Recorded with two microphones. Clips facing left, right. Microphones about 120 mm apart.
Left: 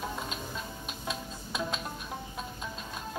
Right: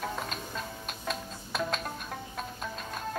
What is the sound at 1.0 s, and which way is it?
Music, 50° right (ahead or behind).